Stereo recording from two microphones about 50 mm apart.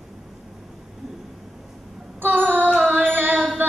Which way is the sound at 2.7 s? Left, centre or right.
Right.